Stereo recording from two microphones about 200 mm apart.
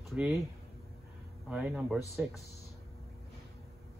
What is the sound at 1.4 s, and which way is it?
Speech, 5° right (ahead or behind).